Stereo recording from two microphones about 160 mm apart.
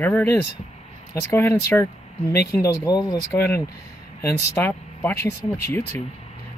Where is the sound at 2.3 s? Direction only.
80° left.